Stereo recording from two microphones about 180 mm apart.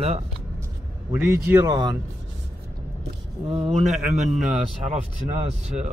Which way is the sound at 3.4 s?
35° right (ahead or behind).